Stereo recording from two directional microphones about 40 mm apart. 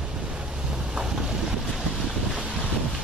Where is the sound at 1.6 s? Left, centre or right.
Centre.